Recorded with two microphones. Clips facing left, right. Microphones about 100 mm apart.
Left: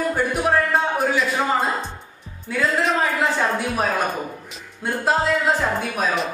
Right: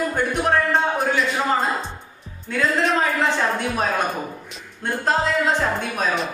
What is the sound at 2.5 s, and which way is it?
A woman's voice, 5° left (ahead or behind).